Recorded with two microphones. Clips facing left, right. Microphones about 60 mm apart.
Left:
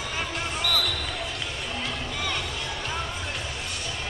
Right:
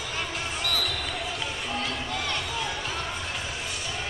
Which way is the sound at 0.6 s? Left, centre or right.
Left.